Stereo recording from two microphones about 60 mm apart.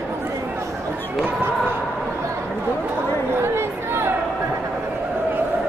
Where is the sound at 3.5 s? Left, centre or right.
Right.